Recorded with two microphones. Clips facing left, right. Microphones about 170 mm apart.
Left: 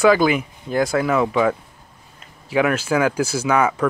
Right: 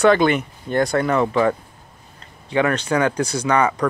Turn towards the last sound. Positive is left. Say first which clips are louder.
# even
turn(degrees=5)  # may be behind; listen again after turning